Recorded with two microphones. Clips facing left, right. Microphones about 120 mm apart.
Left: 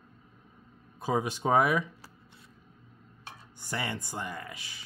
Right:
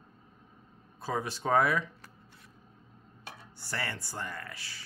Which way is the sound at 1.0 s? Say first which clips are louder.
Left 4 dB; 15° left (ahead or behind).